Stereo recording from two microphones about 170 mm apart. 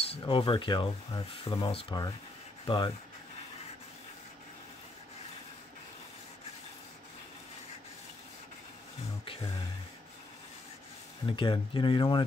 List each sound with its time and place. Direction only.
0.0 s speech: 35° left (ahead or behind)
11.2 s speech: 30° left (ahead or behind)